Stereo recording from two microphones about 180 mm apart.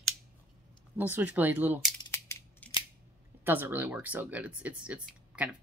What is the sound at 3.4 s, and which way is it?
Speech, 10° right (ahead or behind).